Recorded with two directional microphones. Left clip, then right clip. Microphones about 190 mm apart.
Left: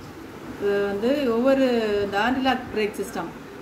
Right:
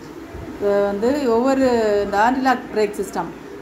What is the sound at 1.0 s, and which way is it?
A woman's voice, 20° right (ahead or behind).